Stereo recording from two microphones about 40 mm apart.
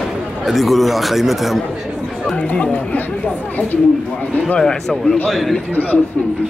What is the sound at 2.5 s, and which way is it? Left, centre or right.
Speech, left.